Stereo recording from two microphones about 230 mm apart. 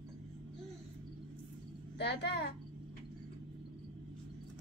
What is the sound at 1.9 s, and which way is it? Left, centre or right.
Speech, left.